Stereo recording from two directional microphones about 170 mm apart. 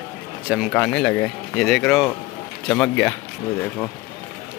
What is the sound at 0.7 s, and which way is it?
Speech, 5° left (ahead or behind).